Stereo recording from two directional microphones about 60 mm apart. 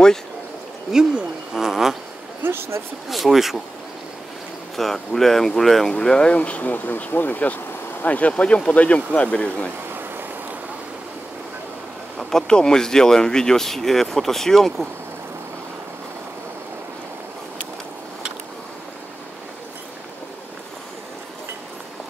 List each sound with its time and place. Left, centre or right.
1.5 s a sound: centre
2.4 s speech: right
3.1 s speech: centre
4.7 s speech: centre
5.9 s speech: centre
12.2 s speech: centre